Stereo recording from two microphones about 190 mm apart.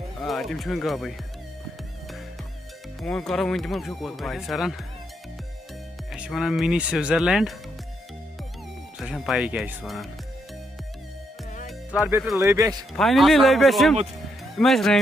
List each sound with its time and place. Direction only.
0.2 s speech: centre (ahead or behind)
3.0 s speech: centre (ahead or behind)
6.1 s speech: 5° right (ahead or behind)
9.0 s speech: centre (ahead or behind)
11.9 s speech: 5° right (ahead or behind)
12.4 s a man's voice: 15° right (ahead or behind)
12.9 s speech: centre (ahead or behind)